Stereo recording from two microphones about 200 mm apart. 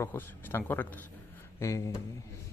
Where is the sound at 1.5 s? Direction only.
15° left (ahead or behind).